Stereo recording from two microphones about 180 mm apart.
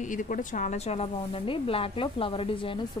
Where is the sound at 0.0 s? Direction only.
45° left (ahead or behind).